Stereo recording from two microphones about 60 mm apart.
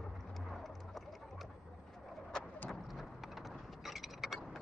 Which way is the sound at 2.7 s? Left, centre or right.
Centre.